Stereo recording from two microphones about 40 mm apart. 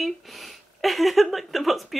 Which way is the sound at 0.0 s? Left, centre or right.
Centre.